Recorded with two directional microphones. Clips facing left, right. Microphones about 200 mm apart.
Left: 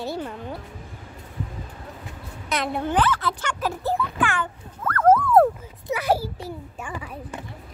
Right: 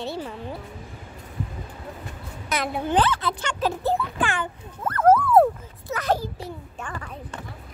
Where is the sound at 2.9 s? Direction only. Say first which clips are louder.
Right 1 dB; 25° right (ahead or behind).